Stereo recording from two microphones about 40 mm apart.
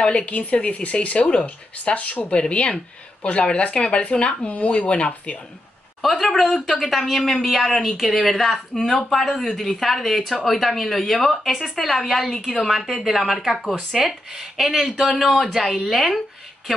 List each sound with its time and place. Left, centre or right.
0.0 s a woman's voice: left
6.0 s speech: centre
14.9 s a man's voice: centre